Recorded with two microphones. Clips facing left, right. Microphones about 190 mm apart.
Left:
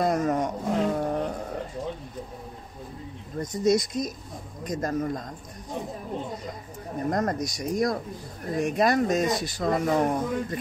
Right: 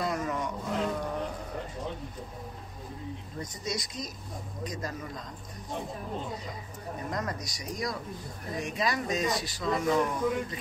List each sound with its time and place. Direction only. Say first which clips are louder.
0.0 s a sound: left 7 dB; 45° left (ahead or behind)
3.3 s speech: left 14 dB; 50° left (ahead or behind)
7.1 s speech: left 10 dB; 50° left (ahead or behind)